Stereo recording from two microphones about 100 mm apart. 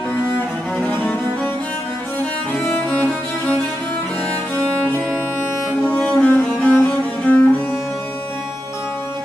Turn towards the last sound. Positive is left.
turn(degrees=15)  # may be behind; listen again after turning